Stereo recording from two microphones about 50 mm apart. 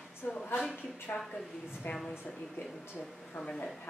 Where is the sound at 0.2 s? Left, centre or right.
Left.